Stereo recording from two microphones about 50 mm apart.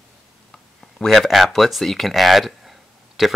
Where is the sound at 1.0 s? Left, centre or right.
Centre.